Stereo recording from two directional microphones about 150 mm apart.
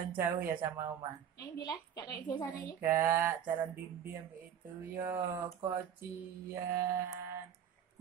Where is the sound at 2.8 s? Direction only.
15° right (ahead or behind).